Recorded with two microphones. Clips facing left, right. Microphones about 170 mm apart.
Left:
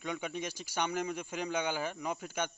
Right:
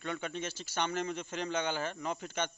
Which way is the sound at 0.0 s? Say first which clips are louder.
Even; 10° left (ahead or behind).